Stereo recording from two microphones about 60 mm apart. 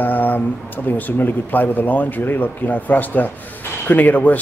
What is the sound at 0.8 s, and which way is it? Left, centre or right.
Speech, left.